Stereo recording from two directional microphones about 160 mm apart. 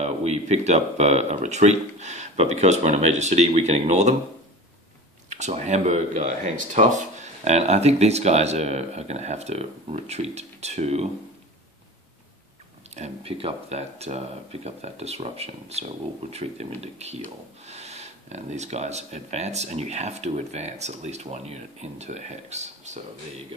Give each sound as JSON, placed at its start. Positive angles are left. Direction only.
{"t": 0.0, "sound": "speech", "side_deg": -45}
{"t": 5.3, "sound": "speech", "side_deg": -45}
{"t": 12.9, "sound": "speech", "side_deg": -40}